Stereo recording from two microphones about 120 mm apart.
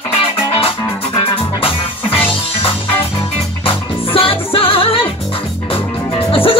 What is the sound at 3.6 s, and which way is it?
Music, 50° left (ahead or behind).